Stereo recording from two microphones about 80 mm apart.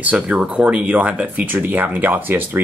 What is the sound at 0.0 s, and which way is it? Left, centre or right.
Speech, centre.